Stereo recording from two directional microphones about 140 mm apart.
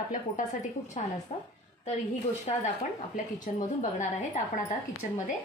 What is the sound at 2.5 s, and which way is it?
Speech, 45° left (ahead or behind).